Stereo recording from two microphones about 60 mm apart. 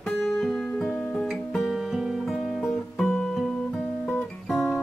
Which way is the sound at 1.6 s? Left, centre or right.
Centre.